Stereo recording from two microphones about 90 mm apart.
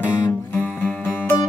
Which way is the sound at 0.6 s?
20° left (ahead or behind).